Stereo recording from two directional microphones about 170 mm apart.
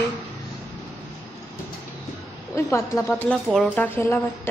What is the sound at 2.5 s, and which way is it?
Speech, 15° left (ahead or behind).